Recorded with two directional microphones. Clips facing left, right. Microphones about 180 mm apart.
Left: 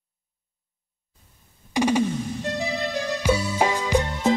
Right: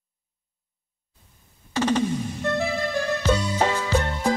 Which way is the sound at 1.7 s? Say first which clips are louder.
Left 1 dB; 10° left (ahead or behind).